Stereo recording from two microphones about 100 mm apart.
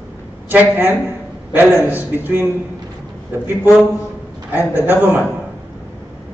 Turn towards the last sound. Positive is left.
turn(degrees=-15)  # may be behind; listen again after turning